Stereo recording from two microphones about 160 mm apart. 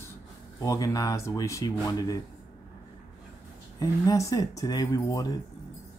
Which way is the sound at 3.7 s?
20° left (ahead or behind).